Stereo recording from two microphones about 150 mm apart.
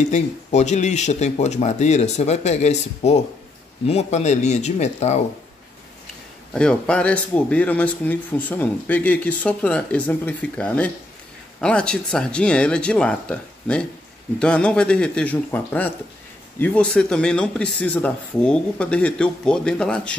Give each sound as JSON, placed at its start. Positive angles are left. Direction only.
{"t": 0.1, "sound": "speech", "side_deg": 50}
{"t": 6.5, "sound": "speech", "side_deg": 5}